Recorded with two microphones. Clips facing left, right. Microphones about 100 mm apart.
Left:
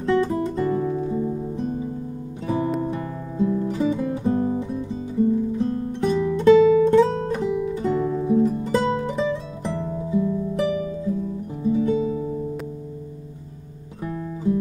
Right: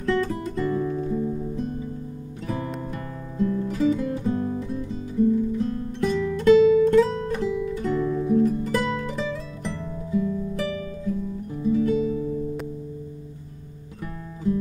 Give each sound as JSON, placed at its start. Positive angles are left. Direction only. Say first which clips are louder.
{"t": 0.0, "sound": "music", "louder": "left 4 dB", "side_deg": 20}
{"t": 14.0, "sound": "music", "louder": "left 3 dB", "side_deg": 20}